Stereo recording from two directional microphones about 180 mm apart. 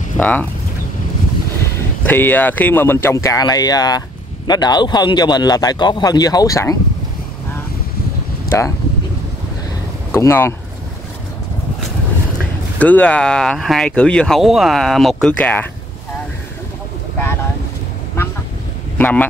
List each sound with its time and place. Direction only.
0.2 s speech: 10° left (ahead or behind)
2.0 s speech: 10° left (ahead or behind)
8.5 s speech: 15° left (ahead or behind)
10.1 s speech: 15° left (ahead or behind)
12.7 s speech: 10° left (ahead or behind)
18.9 s speech: 10° left (ahead or behind)